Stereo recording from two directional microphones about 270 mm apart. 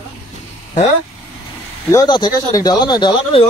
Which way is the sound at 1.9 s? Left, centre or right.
Centre.